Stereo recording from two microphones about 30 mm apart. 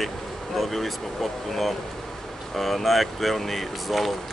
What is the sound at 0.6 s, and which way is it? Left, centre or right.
Speech, centre.